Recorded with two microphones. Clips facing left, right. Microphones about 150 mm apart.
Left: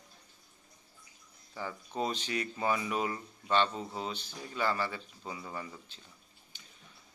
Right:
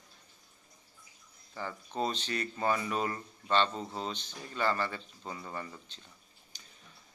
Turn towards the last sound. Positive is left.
turn(degrees=-40)  # may be behind; listen again after turning